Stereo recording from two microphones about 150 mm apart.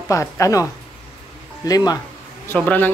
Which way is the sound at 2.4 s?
10° left (ahead or behind).